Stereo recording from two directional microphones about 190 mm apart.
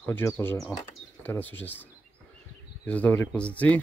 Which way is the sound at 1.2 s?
10° left (ahead or behind).